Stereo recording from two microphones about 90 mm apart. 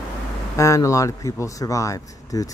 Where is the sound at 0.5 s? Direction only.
35° left (ahead or behind).